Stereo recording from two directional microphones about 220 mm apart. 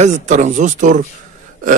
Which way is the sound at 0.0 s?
35° right (ahead or behind).